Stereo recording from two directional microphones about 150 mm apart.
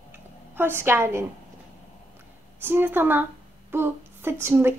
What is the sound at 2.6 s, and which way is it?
A woman's voice, 15° right (ahead or behind).